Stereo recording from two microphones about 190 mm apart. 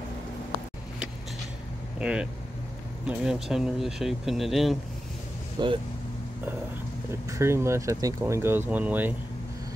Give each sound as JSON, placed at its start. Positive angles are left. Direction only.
{"t": 2.0, "sound": "speech", "side_deg": -5}
{"t": 5.6, "sound": "speech", "side_deg": -25}
{"t": 7.2, "sound": "speech", "side_deg": -15}